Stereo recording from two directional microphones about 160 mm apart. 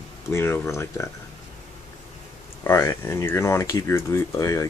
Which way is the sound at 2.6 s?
15° left (ahead or behind).